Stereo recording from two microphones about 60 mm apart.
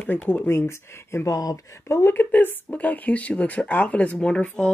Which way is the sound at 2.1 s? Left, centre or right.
Left.